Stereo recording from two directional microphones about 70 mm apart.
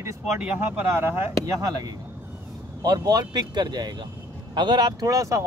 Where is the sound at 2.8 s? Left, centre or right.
Right.